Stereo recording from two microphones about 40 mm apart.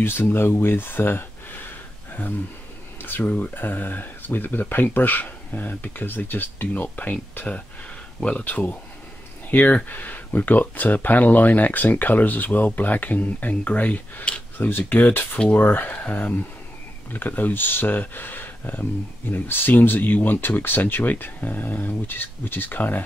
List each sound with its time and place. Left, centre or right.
0.0 s speech: left
3.0 s speech: left
8.5 s speech: left
14.6 s speech: left